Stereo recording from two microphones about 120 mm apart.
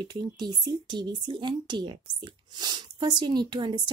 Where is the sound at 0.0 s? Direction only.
35° right (ahead or behind).